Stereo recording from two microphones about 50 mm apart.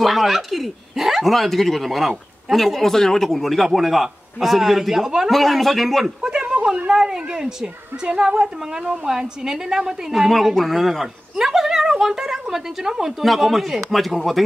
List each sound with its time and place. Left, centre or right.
0.0 s speech: centre
5.3 s speech: centre
6.2 s a woman's voice: centre